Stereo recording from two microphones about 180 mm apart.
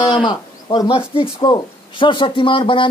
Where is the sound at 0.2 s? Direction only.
25° left (ahead or behind).